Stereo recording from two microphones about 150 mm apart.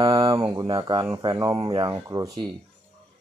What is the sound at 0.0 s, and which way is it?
Mantra, 35° right (ahead or behind).